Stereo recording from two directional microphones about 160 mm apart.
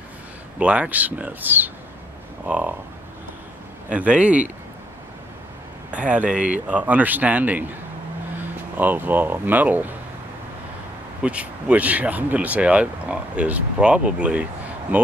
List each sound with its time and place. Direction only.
0.6 s speech: 10° right (ahead or behind)
3.9 s speech: 10° right (ahead or behind)
5.9 s speech: 10° right (ahead or behind)
11.2 s speech: 10° right (ahead or behind)